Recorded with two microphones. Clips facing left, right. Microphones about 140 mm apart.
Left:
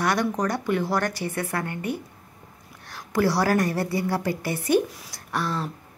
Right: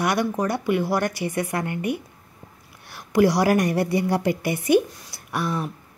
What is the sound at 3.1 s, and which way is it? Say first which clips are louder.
A woman's voice: right 4 dB; 15° right (ahead or behind).